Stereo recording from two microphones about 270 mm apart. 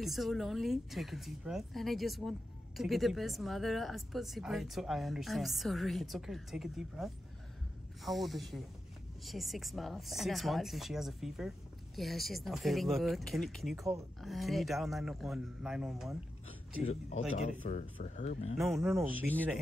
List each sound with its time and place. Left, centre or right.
0.0 s speech: centre
17.4 s speech: left
18.9 s speech: centre